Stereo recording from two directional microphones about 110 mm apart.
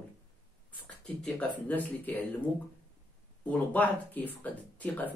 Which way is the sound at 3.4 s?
15° left (ahead or behind).